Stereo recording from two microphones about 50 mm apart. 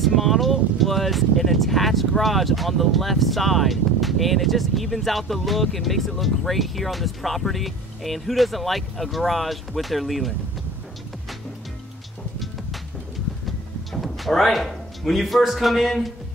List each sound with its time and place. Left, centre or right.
0.0 s speech: centre
14.0 s a man's voice: centre